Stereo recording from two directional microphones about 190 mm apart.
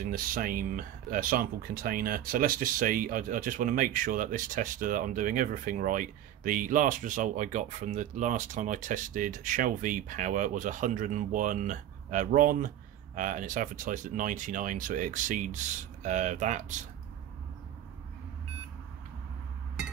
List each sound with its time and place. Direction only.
0.0 s speech: 50° right (ahead or behind)